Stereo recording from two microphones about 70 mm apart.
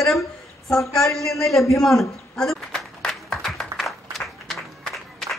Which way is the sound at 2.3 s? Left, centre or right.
Centre.